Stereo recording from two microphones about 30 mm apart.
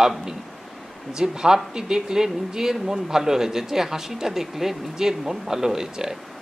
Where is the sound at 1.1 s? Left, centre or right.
Right.